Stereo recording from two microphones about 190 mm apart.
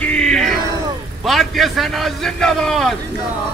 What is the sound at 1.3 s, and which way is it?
A man's voice, centre (ahead or behind).